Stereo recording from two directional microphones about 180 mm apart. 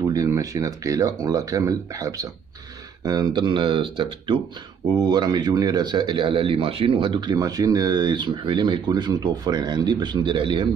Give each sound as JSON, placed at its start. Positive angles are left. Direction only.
{"t": 0.1, "sound": "a man's voice", "side_deg": -20}